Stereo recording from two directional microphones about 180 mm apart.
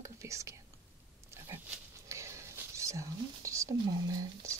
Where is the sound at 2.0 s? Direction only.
15° right (ahead or behind).